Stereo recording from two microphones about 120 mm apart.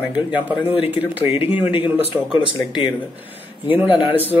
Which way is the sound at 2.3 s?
40° left (ahead or behind).